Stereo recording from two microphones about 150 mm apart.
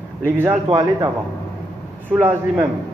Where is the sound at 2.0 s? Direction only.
10° right (ahead or behind).